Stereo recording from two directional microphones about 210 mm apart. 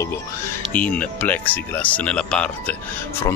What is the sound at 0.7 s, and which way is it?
Speech, 5° left (ahead or behind).